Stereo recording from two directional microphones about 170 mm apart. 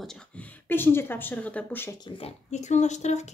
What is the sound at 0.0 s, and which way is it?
Speech, 5° left (ahead or behind).